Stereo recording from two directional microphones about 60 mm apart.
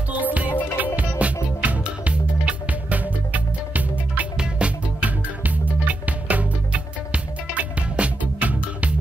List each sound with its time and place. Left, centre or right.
0.1 s music: right